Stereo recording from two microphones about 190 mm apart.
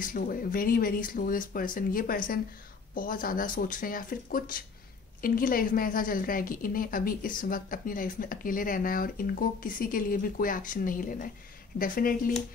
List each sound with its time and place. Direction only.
0.0 s a woman's voice: 50° left (ahead or behind)